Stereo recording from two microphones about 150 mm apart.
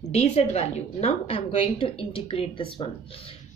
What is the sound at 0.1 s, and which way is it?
A woman's voice, 45° left (ahead or behind).